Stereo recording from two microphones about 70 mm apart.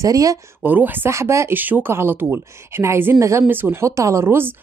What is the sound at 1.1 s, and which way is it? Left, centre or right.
Speech, right.